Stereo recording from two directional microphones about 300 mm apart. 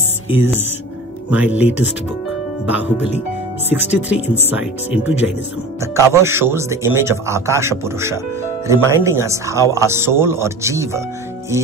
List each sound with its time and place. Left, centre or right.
0.3 s speech: centre
2.8 s speech: left
3.6 s speech: centre